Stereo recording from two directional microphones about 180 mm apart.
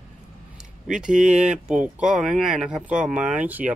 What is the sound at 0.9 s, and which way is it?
Speech, 5° right (ahead or behind).